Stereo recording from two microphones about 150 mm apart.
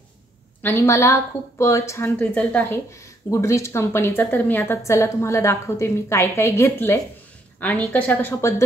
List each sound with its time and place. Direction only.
0.6 s a woman's voice: 15° left (ahead or behind)